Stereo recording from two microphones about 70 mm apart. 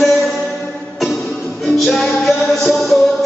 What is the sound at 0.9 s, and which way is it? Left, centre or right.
Music, centre.